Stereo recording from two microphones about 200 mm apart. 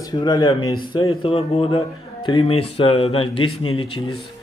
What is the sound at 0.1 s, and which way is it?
A man's voice, 20° left (ahead or behind).